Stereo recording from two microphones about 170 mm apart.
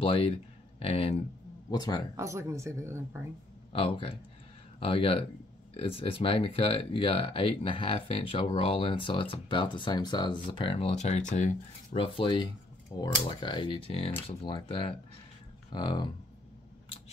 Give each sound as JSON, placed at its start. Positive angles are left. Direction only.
{"t": 0.0, "sound": "speech", "side_deg": 30}
{"t": 1.7, "sound": "speech", "side_deg": 25}
{"t": 2.1, "sound": "speech", "side_deg": -15}
{"t": 3.7, "sound": "speech", "side_deg": 30}
{"t": 11.9, "sound": "speech", "side_deg": 30}